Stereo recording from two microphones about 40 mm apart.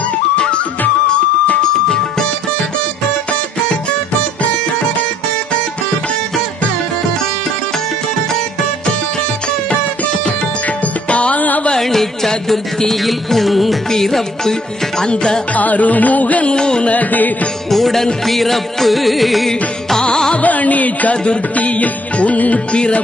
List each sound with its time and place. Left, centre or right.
11.1 s music: left
11.7 s music: centre
15.5 s music: left
16.5 s music: centre
16.8 s music: left
17.6 s music: centre
20.0 s music: centre
20.3 s music: left
21.1 s music: left
21.5 s music: left